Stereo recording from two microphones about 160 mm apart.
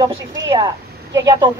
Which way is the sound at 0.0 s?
30° right (ahead or behind).